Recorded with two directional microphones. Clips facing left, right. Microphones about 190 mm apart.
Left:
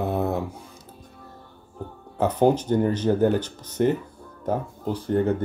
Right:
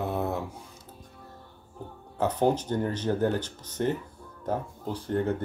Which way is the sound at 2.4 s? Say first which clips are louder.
Left 7 dB; 15° left (ahead or behind).